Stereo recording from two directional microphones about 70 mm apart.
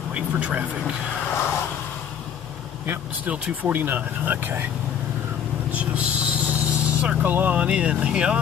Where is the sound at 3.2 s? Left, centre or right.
Centre.